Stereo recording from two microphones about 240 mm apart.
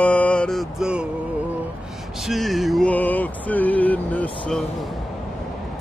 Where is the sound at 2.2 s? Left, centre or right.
Centre.